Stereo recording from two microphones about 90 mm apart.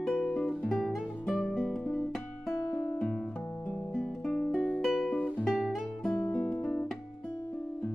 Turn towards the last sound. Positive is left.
turn(degrees=0)  # may be behind; listen again after turning